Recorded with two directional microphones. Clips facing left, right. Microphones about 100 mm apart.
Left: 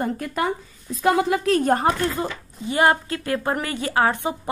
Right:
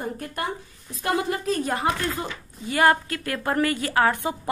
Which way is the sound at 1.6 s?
45° left (ahead or behind).